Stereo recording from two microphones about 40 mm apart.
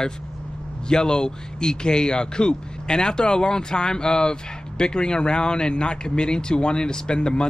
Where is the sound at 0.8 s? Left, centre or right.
Left.